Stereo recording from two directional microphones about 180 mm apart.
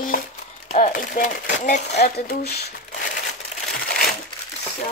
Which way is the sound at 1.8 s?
65° left (ahead or behind).